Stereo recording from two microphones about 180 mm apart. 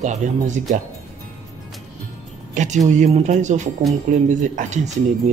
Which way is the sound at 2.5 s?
40° right (ahead or behind).